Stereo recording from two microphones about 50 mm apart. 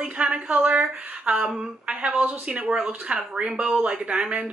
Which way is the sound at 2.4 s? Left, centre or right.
Right.